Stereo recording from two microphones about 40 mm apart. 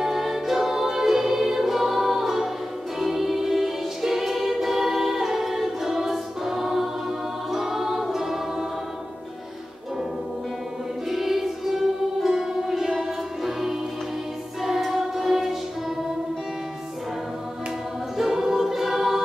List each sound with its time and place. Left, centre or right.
0.0 s music: centre
11.1 s music: centre
18.1 s choir: centre